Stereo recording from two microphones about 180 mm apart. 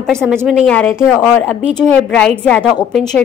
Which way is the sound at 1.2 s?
5° left (ahead or behind).